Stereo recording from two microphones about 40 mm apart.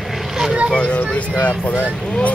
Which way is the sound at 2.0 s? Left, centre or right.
Left.